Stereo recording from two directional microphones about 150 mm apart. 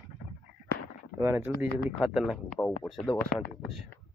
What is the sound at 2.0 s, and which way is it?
Speech, centre (ahead or behind).